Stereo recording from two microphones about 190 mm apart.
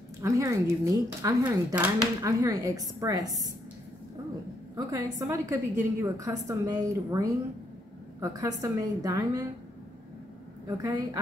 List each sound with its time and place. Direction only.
0.2 s speech: 15° right (ahead or behind)
4.7 s a woman's voice: 20° right (ahead or behind)
10.8 s a woman's voice: 20° right (ahead or behind)